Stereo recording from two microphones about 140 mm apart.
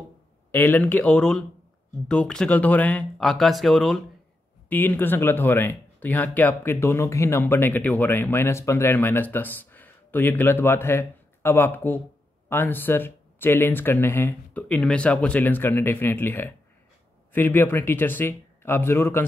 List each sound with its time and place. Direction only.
0.5 s speech: 15° left (ahead or behind)
4.6 s speech: 15° left (ahead or behind)